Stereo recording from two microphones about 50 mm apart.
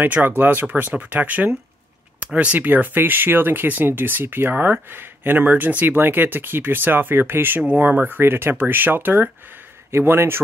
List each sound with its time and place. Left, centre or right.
0.0 s speech: right
7.6 s speech: right